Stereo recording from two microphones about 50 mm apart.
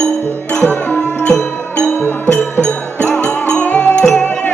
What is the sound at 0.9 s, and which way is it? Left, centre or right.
Music, centre.